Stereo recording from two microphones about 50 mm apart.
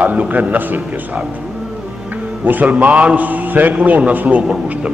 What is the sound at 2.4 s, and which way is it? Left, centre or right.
A man's voice, right.